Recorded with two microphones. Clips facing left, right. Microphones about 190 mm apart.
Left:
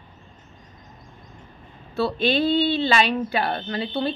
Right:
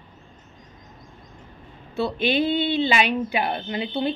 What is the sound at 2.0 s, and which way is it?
Speech, 15° right (ahead or behind).